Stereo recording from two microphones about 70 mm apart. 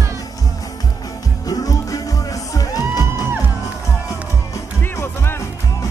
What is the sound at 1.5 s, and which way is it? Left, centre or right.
Music, left.